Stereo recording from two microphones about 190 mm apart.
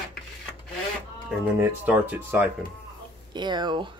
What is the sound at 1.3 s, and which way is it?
Speech, 10° right (ahead or behind).